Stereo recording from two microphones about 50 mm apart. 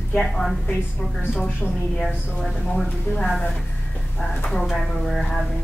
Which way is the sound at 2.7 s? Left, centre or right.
Centre.